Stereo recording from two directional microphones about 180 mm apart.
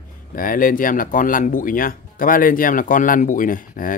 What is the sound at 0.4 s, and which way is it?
Speech, 50° left (ahead or behind).